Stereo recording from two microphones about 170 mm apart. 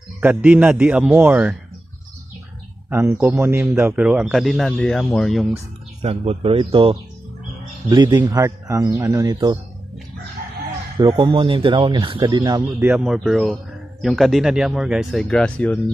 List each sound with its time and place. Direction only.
0.2 s a man's voice: 10° right (ahead or behind)
2.9 s a man's voice: 15° right (ahead or behind); by 5.5 s 5° left (ahead or behind)
6.0 s speech: 35° right (ahead or behind)
11.0 s a man's voice: 25° right (ahead or behind); by 15.8 s 5° left (ahead or behind)